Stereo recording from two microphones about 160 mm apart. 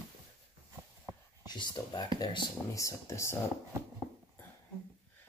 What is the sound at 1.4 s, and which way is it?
Speech, 25° left (ahead or behind).